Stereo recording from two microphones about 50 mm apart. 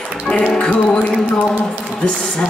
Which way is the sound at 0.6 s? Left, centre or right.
Left.